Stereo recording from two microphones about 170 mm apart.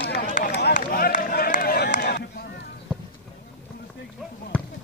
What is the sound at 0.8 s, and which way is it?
Run, 55° left (ahead or behind).